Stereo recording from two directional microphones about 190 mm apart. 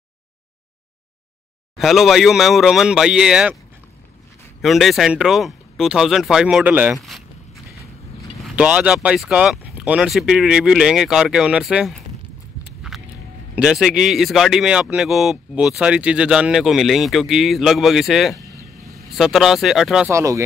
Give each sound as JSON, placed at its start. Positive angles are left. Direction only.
{"t": 1.8, "sound": "speech", "side_deg": 0}
{"t": 4.6, "sound": "speech", "side_deg": 0}
{"t": 8.5, "sound": "speech", "side_deg": -5}
{"t": 12.9, "sound": "a sound", "side_deg": 0}
{"t": 13.6, "sound": "speech", "side_deg": -5}
{"t": 20.1, "sound": "speech", "side_deg": -15}